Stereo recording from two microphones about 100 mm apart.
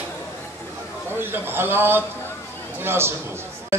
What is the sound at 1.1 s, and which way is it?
A man's voice, 20° right (ahead or behind).